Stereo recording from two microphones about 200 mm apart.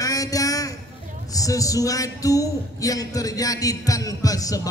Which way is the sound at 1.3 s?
15° left (ahead or behind).